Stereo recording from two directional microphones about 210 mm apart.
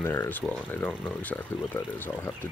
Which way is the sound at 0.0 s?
10° left (ahead or behind).